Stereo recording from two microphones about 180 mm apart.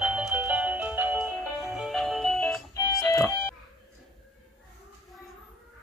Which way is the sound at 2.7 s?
20° left (ahead or behind).